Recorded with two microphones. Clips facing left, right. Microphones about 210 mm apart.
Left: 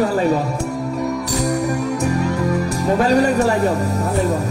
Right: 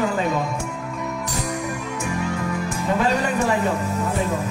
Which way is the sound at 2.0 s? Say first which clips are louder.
Left 6 dB; 40° left (ahead or behind).